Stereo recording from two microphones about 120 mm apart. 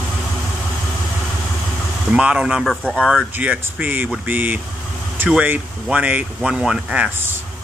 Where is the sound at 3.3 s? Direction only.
10° right (ahead or behind).